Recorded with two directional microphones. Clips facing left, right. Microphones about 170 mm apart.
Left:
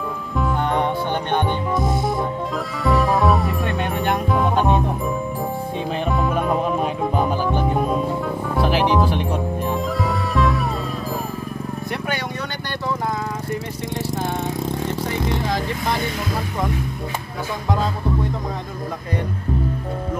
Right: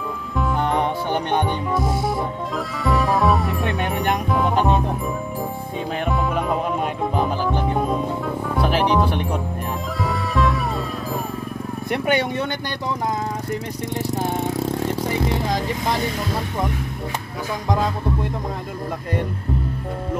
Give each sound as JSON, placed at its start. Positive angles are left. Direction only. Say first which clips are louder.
{"t": 0.7, "sound": "music", "louder": "even", "side_deg": -10}
{"t": 6.2, "sound": "music", "louder": "left 2 dB", "side_deg": 0}
{"t": 8.5, "sound": "speech", "louder": "left 1 dB", "side_deg": 0}
{"t": 10.0, "sound": "music", "louder": "right 2 dB", "side_deg": 0}
{"t": 11.9, "sound": "speech", "louder": "right 8 dB", "side_deg": -20}